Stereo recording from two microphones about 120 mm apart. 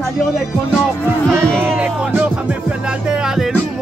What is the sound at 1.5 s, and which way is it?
Speech, 15° right (ahead or behind).